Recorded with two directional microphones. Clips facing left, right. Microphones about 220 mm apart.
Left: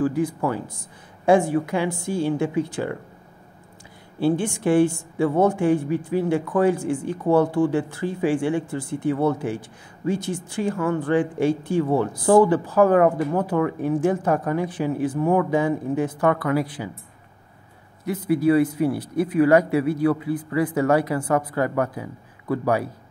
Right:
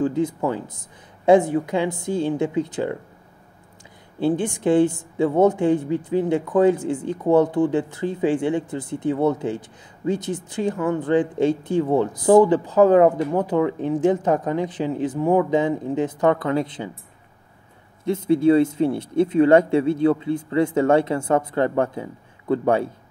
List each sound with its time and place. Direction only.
0.0 s a woman's voice: 25° right (ahead or behind)
4.2 s a woman's voice: 20° right (ahead or behind)
18.0 s a woman's voice: 25° right (ahead or behind)